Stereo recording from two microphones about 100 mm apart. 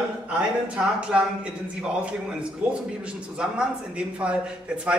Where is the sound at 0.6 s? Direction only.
10° right (ahead or behind).